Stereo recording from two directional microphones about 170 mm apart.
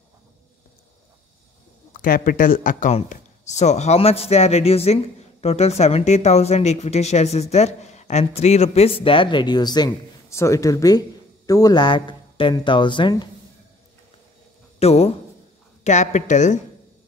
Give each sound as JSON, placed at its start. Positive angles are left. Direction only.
{"t": 2.0, "sound": "speech", "side_deg": 55}
{"t": 14.8, "sound": "a woman's voice", "side_deg": 35}